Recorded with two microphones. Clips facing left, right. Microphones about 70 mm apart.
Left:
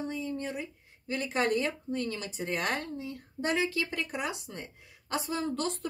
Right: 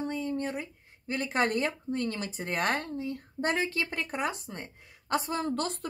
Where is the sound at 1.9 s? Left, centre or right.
Right.